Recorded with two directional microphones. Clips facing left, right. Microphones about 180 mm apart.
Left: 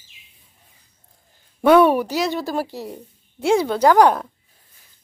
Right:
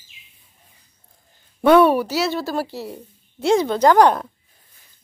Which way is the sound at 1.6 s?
10° left (ahead or behind).